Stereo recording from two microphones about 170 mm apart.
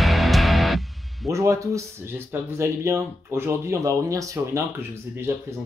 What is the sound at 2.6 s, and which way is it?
Speech, 15° right (ahead or behind).